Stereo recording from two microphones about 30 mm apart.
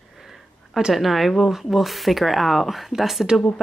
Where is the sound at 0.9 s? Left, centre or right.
Centre.